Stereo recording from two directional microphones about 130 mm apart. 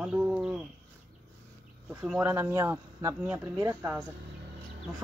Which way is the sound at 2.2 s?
20° right (ahead or behind).